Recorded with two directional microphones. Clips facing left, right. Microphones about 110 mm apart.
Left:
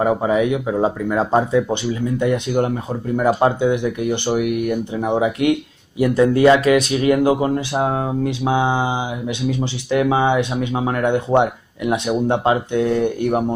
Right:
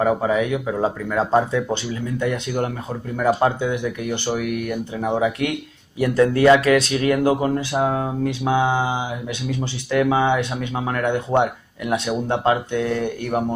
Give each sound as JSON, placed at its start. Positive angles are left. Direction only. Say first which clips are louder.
{"t": 0.0, "sound": "speech", "louder": "left 2 dB", "side_deg": 15}